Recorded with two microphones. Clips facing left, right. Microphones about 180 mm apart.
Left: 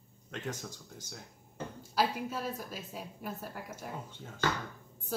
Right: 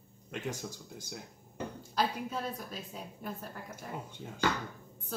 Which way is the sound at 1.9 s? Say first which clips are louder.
Left 1 dB; 5° left (ahead or behind).